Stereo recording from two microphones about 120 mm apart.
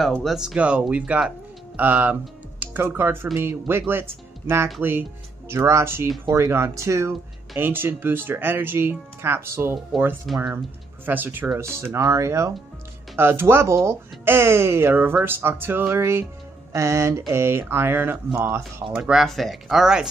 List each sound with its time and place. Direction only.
0.0 s speech: centre (ahead or behind); by 10.1 s 20° right (ahead or behind)
10.2 s speech: centre (ahead or behind)
11.1 s speech: 15° right (ahead or behind)
18.9 s speech: 10° right (ahead or behind)